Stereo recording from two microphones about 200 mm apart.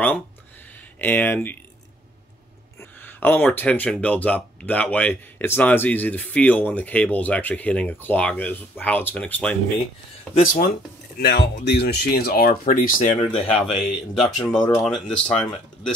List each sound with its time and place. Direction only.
0.9 s speech: 10° left (ahead or behind)
2.8 s speech: 10° left (ahead or behind)
10.4 s speech: 45° left (ahead or behind)
11.1 s speech: 55° left (ahead or behind); by 13.5 s 30° left (ahead or behind)
13.7 s speech: centre (ahead or behind)
14.6 s speech: 15° left (ahead or behind)
14.9 s speech: 5° left (ahead or behind)